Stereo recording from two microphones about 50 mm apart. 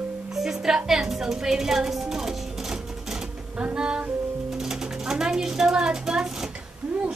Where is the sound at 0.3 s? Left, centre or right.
Centre.